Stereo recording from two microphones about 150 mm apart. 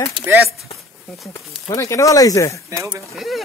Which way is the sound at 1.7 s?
20° left (ahead or behind).